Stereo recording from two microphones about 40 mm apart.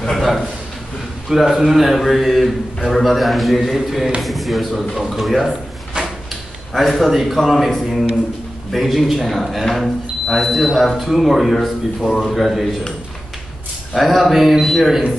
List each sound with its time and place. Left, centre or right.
1.3 s speech: centre
6.0 s drawer open or close: right
6.7 s speech: centre
13.9 s speech: centre